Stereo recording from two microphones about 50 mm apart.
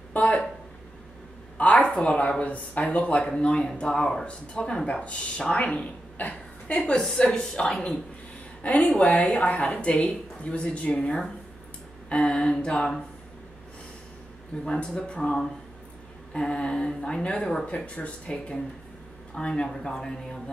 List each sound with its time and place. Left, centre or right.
0.1 s a sound: left
1.6 s a woman's voice: left
6.8 s speech: centre
8.6 s speech: left
14.6 s speech: centre